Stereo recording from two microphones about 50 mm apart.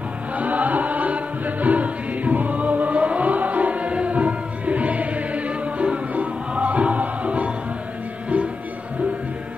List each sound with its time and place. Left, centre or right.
0.3 s chant: right